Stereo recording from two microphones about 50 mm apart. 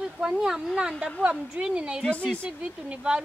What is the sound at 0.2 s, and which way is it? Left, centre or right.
Speech, centre.